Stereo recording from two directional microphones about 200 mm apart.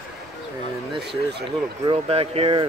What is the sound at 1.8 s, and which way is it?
Speech, 30° right (ahead or behind).